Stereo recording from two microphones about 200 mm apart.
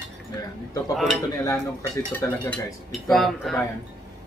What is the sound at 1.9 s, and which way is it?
Speech, 15° left (ahead or behind).